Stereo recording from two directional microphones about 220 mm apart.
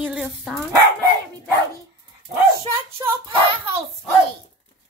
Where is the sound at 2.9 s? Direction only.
10° right (ahead or behind).